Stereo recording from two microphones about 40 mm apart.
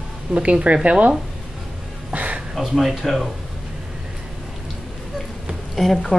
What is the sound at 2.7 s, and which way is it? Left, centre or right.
Speech, centre.